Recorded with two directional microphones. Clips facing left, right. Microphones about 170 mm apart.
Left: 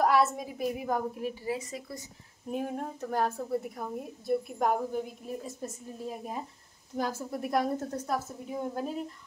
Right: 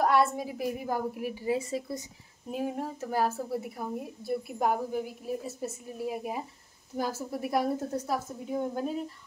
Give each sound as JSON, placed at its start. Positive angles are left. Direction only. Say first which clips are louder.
{"t": 0.0, "sound": "a woman's voice", "louder": "even", "side_deg": 0}
{"t": 1.4, "sound": "speech", "louder": "right 5 dB", "side_deg": -25}
{"t": 2.5, "sound": "a woman's voice", "louder": "right 1 dB", "side_deg": -5}